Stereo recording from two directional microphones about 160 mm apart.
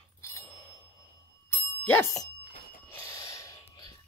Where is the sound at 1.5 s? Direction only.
15° left (ahead or behind).